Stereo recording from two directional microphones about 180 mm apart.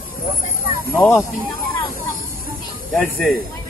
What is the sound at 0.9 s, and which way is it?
Speech, 10° left (ahead or behind).